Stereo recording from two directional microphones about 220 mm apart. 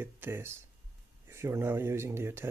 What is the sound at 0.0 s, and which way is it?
Speech, 10° right (ahead or behind).